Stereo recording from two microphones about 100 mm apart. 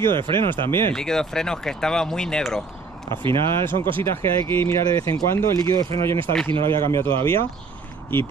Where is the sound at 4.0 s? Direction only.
25° left (ahead or behind).